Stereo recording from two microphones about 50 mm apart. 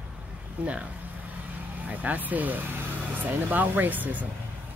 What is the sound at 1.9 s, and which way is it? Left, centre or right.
Speech, right.